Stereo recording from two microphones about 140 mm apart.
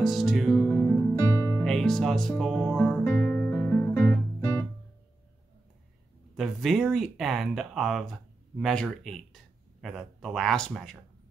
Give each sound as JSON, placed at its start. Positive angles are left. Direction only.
{"t": 0.0, "sound": "music", "side_deg": 0}
{"t": 0.7, "sound": "music", "side_deg": 15}
{"t": 1.6, "sound": "music", "side_deg": 5}
{"t": 3.2, "sound": "guitar", "side_deg": 10}
{"t": 6.3, "sound": "speech", "side_deg": 0}